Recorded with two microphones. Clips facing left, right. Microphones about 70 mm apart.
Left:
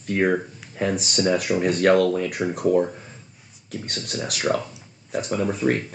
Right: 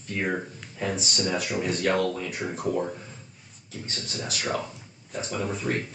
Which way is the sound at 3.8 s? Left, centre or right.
Left.